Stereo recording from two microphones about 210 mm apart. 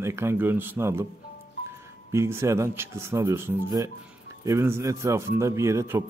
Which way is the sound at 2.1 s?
15° right (ahead or behind).